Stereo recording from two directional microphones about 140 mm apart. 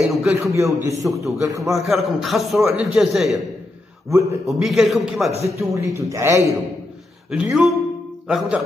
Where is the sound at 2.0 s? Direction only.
Centre (ahead or behind).